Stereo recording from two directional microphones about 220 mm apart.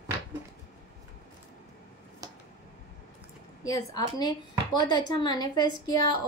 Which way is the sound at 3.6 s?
15° left (ahead or behind).